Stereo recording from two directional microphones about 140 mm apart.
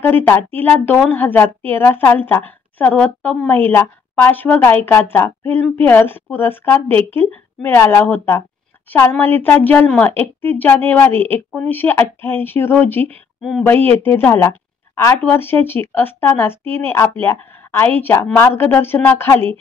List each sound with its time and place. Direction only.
0.0 s a woman's voice: 15° left (ahead or behind)
13.8 s a woman's voice: 15° left (ahead or behind)